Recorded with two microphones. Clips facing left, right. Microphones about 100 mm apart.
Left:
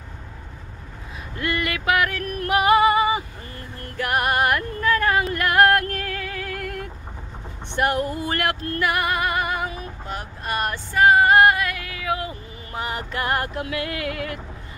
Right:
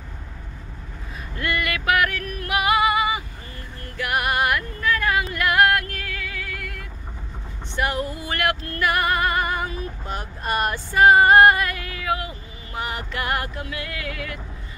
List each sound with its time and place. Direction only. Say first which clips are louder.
1.4 s music: even; 25° left (ahead or behind)
2.2 s female singing: left 4 dB; 40° left (ahead or behind)
3.9 s music: left 2 dB; 40° left (ahead or behind)
7.7 s a sound: left 3 dB; 55° left (ahead or behind)
8.4 s music: right 3 dB; 30° left (ahead or behind); by 12.1 s 5° left (ahead or behind)
12.3 s vehicle: left 2 dB; 30° left (ahead or behind)
13.6 s music: left 5 dB; 70° left (ahead or behind)